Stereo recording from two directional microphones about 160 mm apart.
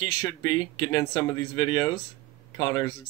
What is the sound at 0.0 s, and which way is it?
Speech, 25° left (ahead or behind).